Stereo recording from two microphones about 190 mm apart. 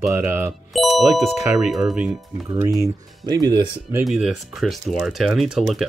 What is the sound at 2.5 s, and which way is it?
Speech, 20° right (ahead or behind).